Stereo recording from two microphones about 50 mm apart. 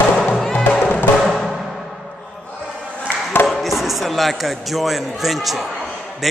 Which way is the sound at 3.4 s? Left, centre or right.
Centre.